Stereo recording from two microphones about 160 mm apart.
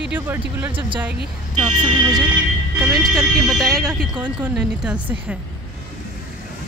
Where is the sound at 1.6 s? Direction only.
30° right (ahead or behind).